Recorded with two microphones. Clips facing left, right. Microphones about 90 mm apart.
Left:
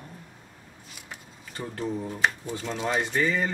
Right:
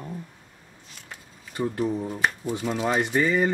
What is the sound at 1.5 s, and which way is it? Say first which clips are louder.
Speech: right 6 dB; 10° right (ahead or behind).